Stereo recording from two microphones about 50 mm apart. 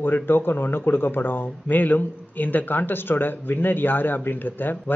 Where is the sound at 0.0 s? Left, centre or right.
Left.